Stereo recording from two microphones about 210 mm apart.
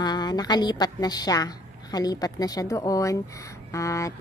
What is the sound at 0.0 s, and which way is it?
A woman's voice, 20° left (ahead or behind).